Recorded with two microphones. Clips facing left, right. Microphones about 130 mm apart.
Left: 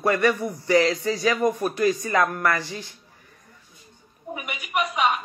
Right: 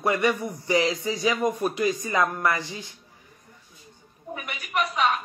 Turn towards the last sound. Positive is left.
turn(degrees=15)  # may be behind; listen again after turning